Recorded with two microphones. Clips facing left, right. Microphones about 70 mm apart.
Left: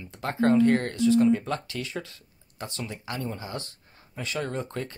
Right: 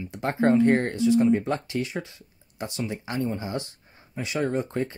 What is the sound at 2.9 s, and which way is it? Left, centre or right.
Speech, right.